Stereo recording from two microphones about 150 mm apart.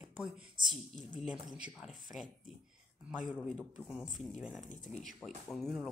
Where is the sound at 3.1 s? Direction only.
5° right (ahead or behind).